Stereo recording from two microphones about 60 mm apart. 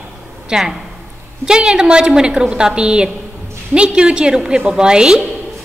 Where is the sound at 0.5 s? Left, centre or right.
Centre.